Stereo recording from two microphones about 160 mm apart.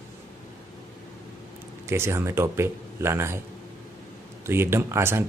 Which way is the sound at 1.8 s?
15° right (ahead or behind).